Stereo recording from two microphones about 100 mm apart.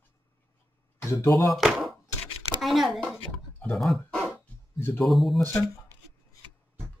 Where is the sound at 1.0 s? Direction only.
30° left (ahead or behind).